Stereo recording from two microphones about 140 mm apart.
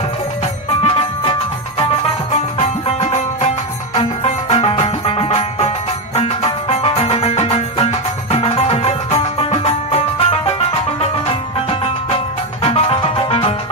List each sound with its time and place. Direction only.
0.8 s music: 45° left (ahead or behind)
2.3 s music: 50° left (ahead or behind)
4.8 s music: 40° left (ahead or behind)
12.6 s music: 45° left (ahead or behind)